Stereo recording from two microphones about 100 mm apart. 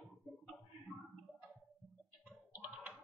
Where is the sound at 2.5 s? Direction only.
15° right (ahead or behind).